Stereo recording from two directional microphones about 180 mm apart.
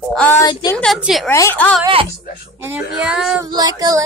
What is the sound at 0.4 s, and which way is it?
Speech, 20° left (ahead or behind).